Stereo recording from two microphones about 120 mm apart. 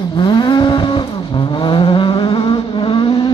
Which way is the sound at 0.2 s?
40° left (ahead or behind).